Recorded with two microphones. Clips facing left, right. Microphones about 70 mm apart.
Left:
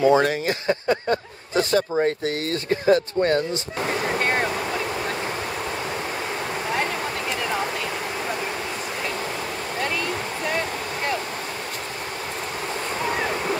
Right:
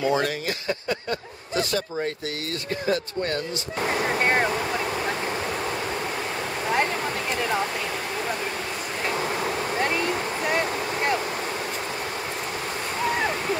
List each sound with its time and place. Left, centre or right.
0.0 s speech: left
4.2 s speech: centre
9.8 s stream: right
10.4 s vehicle: centre